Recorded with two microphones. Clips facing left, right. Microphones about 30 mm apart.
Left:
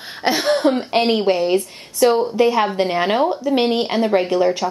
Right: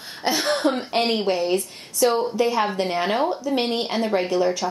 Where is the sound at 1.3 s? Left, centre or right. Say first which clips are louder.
Left 5 dB; left.